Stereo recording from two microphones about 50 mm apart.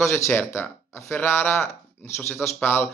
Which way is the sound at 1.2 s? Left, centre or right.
Left.